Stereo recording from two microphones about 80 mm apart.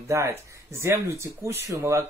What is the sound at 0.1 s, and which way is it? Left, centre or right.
Speech, right.